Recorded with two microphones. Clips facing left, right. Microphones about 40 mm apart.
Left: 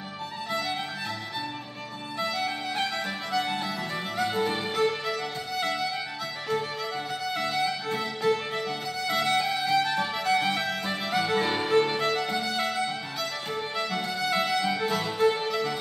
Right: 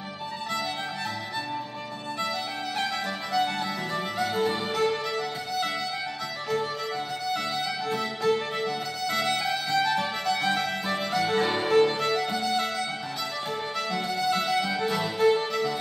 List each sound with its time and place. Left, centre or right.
2.8 s music: centre
7.2 s music: centre